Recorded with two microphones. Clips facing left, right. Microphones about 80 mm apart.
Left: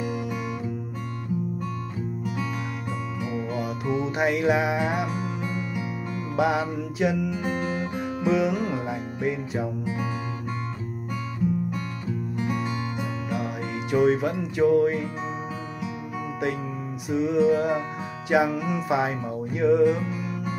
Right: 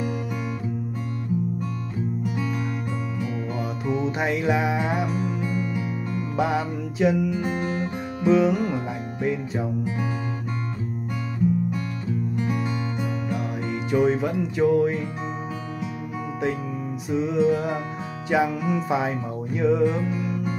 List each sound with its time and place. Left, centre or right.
3.8 s music: centre
6.3 s music: centre
13.3 s music: centre
17.1 s music: centre